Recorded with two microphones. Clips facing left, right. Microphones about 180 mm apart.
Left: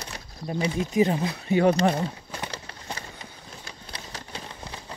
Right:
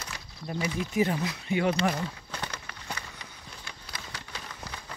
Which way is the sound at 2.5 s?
30° left (ahead or behind).